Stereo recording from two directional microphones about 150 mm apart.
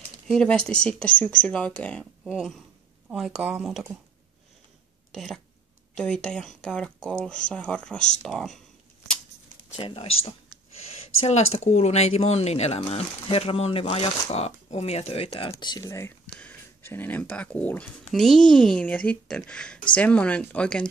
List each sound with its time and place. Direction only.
0.3 s speech: 5° left (ahead or behind)
5.1 s speech: centre (ahead or behind)
9.8 s speech: 35° left (ahead or behind); by 20.9 s 5° left (ahead or behind)